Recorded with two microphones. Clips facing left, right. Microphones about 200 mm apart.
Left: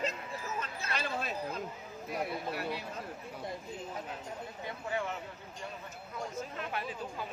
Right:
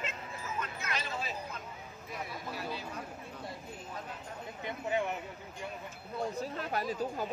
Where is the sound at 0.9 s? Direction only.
60° left (ahead or behind).